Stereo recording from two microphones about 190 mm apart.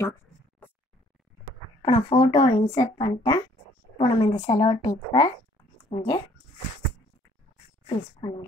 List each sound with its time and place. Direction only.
1.8 s speech: 25° left (ahead or behind)
7.8 s a woman's voice: 25° left (ahead or behind)